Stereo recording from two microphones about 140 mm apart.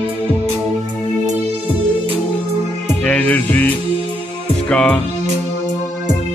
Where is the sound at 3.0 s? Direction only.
10° left (ahead or behind).